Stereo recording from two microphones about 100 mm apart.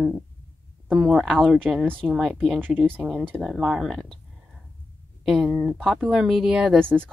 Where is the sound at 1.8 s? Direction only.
15° right (ahead or behind).